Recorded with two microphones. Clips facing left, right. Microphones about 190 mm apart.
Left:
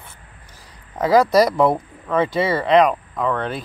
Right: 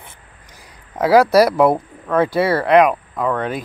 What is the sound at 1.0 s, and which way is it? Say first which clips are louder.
Speech: right 2 dB; 10° right (ahead or behind).